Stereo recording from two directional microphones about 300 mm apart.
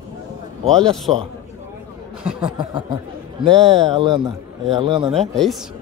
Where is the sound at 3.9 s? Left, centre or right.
Centre.